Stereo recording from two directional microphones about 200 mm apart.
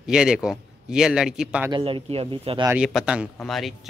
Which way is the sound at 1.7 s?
25° right (ahead or behind).